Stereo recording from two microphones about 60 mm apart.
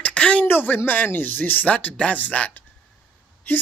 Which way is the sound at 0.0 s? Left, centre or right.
Centre.